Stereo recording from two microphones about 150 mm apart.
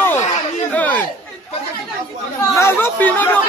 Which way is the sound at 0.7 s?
10° left (ahead or behind).